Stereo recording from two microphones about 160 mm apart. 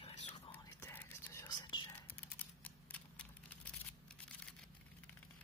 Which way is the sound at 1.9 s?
10° left (ahead or behind).